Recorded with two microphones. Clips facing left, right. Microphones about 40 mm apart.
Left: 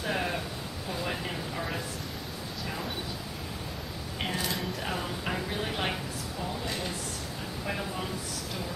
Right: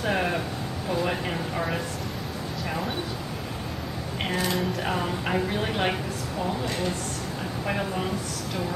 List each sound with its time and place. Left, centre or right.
0.0 s a sound: centre
0.8 s speech: centre
4.6 s speech: right